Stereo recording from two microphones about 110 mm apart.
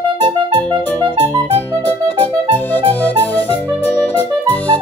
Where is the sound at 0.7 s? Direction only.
20° left (ahead or behind).